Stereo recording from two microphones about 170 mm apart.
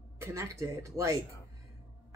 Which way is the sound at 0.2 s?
15° right (ahead or behind).